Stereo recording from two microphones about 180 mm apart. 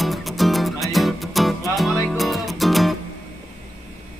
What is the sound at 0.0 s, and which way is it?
Music, centre (ahead or behind).